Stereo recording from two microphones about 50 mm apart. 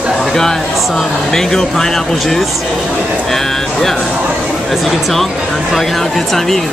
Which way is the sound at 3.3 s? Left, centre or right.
Centre.